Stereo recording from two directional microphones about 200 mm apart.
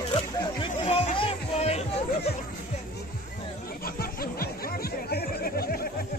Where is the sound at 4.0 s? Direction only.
50° left (ahead or behind).